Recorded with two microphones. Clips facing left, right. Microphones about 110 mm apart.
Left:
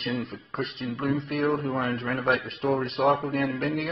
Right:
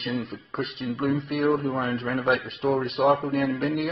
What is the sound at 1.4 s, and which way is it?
Speech, centre (ahead or behind).